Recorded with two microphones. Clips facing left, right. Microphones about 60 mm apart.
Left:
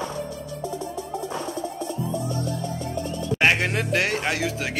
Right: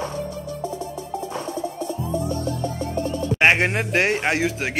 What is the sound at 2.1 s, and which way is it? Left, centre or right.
Music, right.